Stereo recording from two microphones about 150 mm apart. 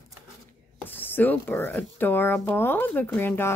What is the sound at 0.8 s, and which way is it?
Speech, 10° left (ahead or behind).